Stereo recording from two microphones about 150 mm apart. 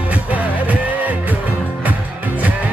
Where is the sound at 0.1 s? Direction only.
10° right (ahead or behind).